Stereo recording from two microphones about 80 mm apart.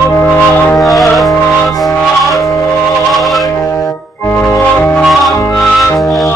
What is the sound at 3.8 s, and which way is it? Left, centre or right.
Music, left.